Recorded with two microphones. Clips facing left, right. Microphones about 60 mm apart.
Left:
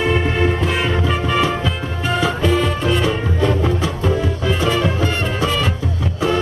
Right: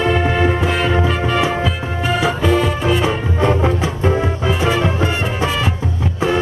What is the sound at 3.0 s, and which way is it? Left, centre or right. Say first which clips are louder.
Music: right 1 dB; right.